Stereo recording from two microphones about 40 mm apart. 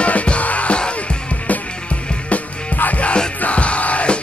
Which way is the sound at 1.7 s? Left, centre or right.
Left.